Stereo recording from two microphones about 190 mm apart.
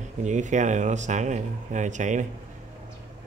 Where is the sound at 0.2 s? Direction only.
40° right (ahead or behind).